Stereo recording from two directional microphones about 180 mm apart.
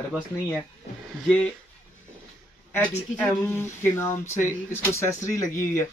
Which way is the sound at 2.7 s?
10° left (ahead or behind).